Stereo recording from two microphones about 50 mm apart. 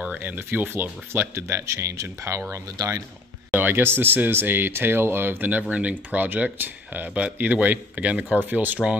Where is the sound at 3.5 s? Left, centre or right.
Right.